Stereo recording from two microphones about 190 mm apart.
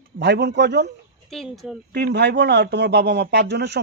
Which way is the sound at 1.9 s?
60° right (ahead or behind).